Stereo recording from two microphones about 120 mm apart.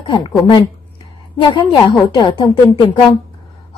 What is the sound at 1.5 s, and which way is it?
A woman's voice, 45° left (ahead or behind).